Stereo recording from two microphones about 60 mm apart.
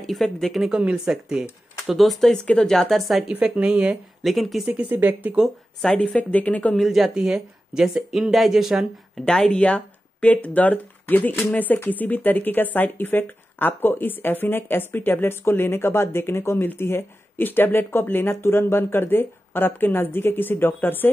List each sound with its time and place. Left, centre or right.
0.0 s speech: centre
0.7 s speech: centre
1.9 s speech: centre
2.4 s speech: centre
2.7 s speech: centre
3.3 s a woman's voice: right
4.2 s speech: centre
4.6 s speech: centre
4.9 s a woman's voice: right
5.8 s speech: centre
6.8 s speech: centre
9.2 s speech: centre; by 21.1 s left